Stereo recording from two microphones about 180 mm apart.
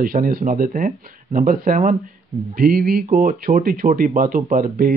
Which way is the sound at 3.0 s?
50° right (ahead or behind).